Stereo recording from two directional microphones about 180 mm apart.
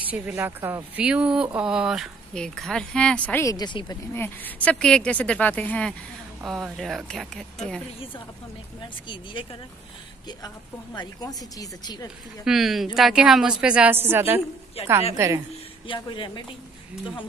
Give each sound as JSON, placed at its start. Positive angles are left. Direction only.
{"t": 0.1, "sound": "speech", "side_deg": -10}
{"t": 4.1, "sound": "speech", "side_deg": 10}
{"t": 9.0, "sound": "speech", "side_deg": 25}
{"t": 11.0, "sound": "speech", "side_deg": 20}
{"t": 12.4, "sound": "a woman's voice", "side_deg": 0}
{"t": 15.9, "sound": "speech", "side_deg": 25}